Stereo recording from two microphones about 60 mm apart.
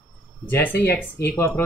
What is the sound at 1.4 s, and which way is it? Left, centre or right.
Speech, left.